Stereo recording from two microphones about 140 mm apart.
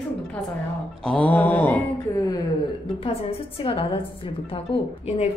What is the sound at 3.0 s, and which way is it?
A woman's voice, 45° left (ahead or behind).